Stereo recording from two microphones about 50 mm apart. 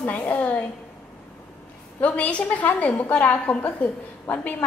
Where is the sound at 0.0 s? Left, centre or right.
Left.